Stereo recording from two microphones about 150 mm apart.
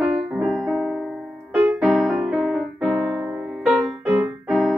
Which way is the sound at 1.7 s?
Centre (ahead or behind).